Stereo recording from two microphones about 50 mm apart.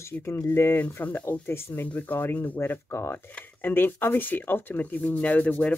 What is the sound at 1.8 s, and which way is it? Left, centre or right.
Speech, left.